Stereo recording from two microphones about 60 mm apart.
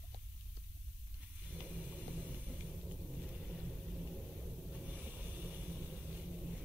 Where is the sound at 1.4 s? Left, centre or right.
Centre.